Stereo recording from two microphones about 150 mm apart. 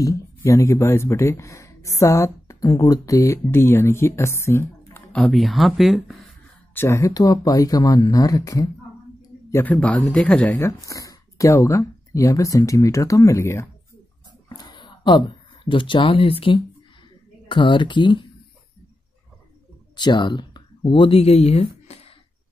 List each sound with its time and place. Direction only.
0.0 s speech: 20° left (ahead or behind)
5.1 s speech: centre (ahead or behind)
6.7 s speech: 15° left (ahead or behind)
9.5 s speech: 10° left (ahead or behind)
14.5 s a sound: 25° left (ahead or behind)
17.5 s speech: 35° left (ahead or behind)
20.0 s speech: 30° left (ahead or behind); by 21.6 s 45° left (ahead or behind)
21.8 s a sound: 45° left (ahead or behind)